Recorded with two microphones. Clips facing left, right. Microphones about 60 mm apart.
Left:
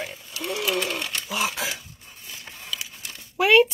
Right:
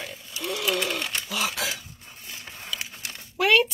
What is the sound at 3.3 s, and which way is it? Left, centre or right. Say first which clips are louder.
Speech: left 4 dB; centre.